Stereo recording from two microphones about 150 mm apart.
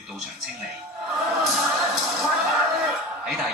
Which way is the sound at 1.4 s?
Centre (ahead or behind).